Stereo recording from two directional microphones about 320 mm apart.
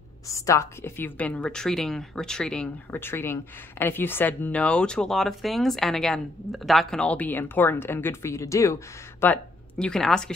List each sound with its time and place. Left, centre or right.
0.3 s a woman's voice: centre